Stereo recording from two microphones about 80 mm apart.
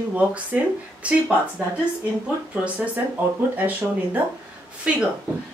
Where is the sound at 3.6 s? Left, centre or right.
Right.